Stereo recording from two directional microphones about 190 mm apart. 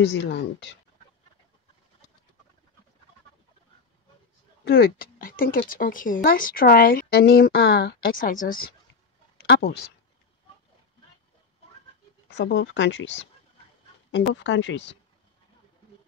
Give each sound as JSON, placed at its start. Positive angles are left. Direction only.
{"t": 0.2, "sound": "speech", "side_deg": 65}
{"t": 4.6, "sound": "speech", "side_deg": 55}
{"t": 12.4, "sound": "speech", "side_deg": 70}